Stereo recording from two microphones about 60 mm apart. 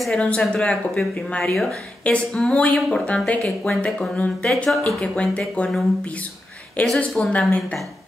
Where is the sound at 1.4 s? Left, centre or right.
Centre.